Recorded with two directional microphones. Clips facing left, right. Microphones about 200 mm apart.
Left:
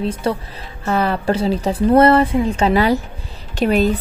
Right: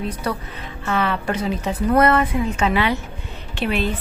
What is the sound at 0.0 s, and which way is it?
A woman's voice, 25° left (ahead or behind).